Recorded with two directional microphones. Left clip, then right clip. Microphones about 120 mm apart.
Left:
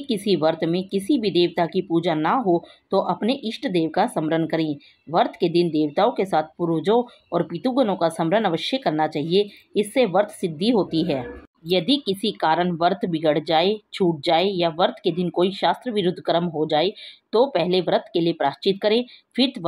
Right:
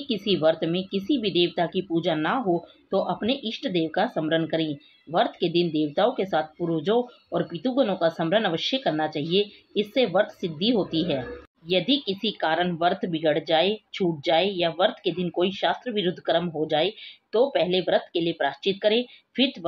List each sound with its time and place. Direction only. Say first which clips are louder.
0.1 s speech: left 2 dB; 35° left (ahead or behind)